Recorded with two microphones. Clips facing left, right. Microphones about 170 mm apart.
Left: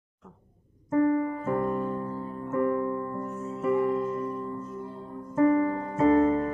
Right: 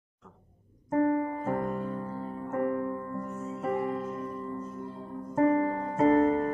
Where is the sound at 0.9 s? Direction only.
35° right (ahead or behind).